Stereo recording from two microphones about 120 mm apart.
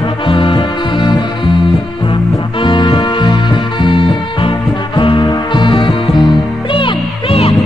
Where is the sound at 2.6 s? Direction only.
40° left (ahead or behind).